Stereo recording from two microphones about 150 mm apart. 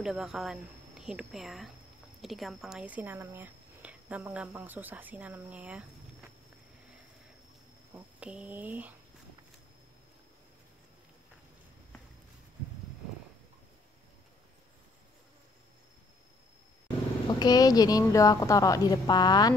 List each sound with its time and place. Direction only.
0.0 s a woman's voice: 5° right (ahead or behind)
7.9 s speech: 10° right (ahead or behind)
17.3 s a woman's voice: 25° left (ahead or behind)